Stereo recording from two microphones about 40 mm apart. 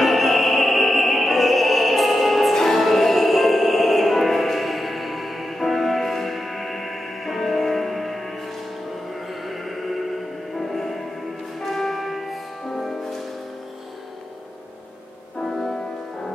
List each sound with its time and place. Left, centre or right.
0.0 s music: centre